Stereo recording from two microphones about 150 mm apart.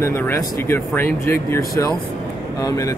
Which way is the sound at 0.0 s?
15° left (ahead or behind).